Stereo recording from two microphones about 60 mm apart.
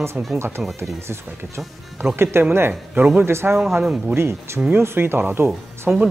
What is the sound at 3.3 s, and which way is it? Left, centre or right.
Speech, right.